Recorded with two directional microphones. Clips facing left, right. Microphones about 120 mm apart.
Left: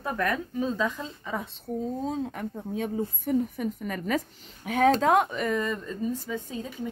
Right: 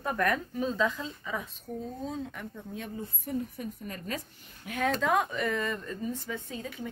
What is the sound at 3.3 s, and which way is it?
Speech, 85° left.